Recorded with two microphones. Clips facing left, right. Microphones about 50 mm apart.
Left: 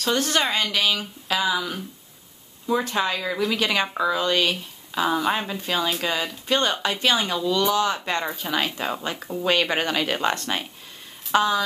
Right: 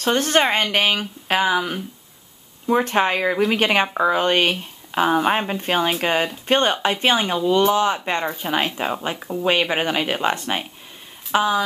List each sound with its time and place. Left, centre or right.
0.0 s speech: right; by 11.6 s centre